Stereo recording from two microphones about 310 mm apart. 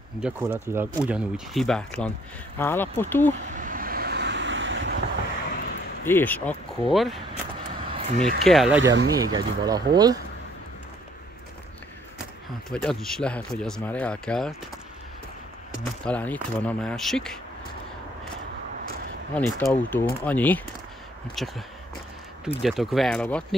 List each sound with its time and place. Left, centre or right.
0.2 s speech: centre
3.5 s vehicle: right
6.0 s speech: centre
7.9 s vehicle: right
8.5 s speech: centre
8.8 s speech: right
9.3 s speech: centre
12.7 s speech: centre
16.1 s speech: centre
19.3 s speech: centre